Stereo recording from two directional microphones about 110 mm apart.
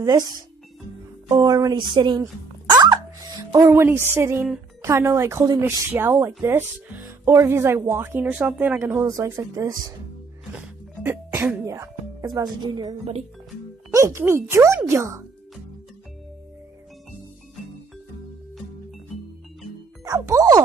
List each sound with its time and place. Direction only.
0.0 s speech: 35° right (ahead or behind)
1.9 s a woman's voice: 45° right (ahead or behind)
2.6 s music: 40° right (ahead or behind)
3.6 s speech: 20° right (ahead or behind); by 9.9 s 35° right (ahead or behind)
10.5 s music: 15° right (ahead or behind)
12.4 s speech: 40° right (ahead or behind)
13.9 s speech: 25° right (ahead or behind)
20.1 s speech: 30° right (ahead or behind)